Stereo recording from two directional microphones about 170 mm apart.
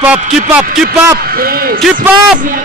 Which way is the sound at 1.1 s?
60° right (ahead or behind).